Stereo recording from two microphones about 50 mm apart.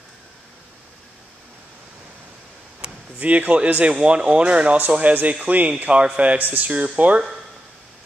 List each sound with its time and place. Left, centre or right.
3.2 s speech: right